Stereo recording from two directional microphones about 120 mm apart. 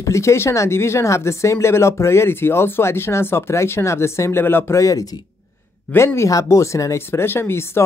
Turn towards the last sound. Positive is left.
turn(degrees=20)  # may be behind; listen again after turning